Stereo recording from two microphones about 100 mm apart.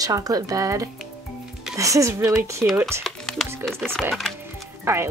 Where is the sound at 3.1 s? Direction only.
5° left (ahead or behind).